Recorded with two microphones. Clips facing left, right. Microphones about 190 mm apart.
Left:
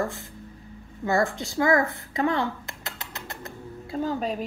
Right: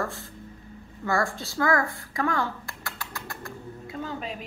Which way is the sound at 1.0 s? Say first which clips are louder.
Left 3 dB; 20° left (ahead or behind).